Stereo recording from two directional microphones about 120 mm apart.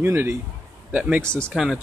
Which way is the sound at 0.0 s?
20° right (ahead or behind).